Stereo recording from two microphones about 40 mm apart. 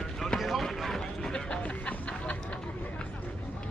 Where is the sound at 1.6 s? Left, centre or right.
Left.